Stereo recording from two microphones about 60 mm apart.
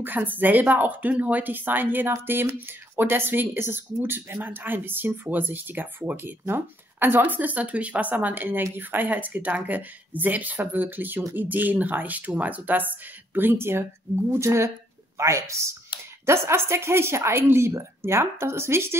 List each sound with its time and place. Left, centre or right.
0.0 s speech: right